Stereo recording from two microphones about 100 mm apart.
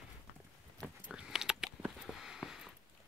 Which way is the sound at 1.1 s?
5° right (ahead or behind).